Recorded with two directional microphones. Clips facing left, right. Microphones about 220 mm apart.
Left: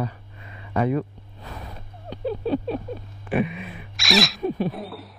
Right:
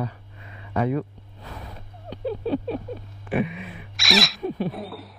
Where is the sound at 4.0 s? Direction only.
Centre (ahead or behind).